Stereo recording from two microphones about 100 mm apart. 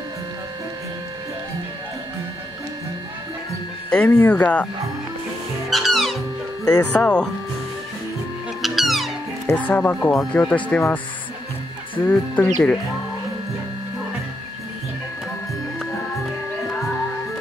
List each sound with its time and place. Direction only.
3.9 s speech: 20° left (ahead or behind)
5.7 s music: centre (ahead or behind)
6.8 s speech: 10° left (ahead or behind)
8.6 s music: centre (ahead or behind)
9.5 s speech: 15° left (ahead or behind)
12.0 s speech: 15° left (ahead or behind)